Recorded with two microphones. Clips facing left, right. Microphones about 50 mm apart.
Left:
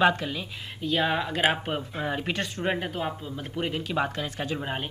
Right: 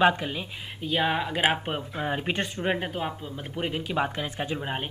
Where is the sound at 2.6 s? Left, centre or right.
Centre.